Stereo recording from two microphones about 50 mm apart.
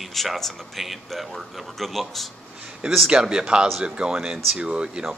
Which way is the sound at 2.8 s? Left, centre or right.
Centre.